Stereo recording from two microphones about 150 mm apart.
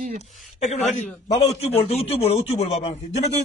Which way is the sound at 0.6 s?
50° left (ahead or behind).